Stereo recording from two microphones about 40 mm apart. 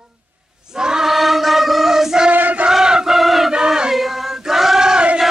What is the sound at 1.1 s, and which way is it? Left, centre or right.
Chant, centre.